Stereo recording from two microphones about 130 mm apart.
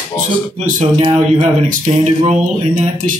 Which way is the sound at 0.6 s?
90° right.